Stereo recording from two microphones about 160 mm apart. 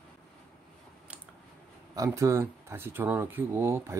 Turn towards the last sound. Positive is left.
turn(degrees=-15)  # may be behind; listen again after turning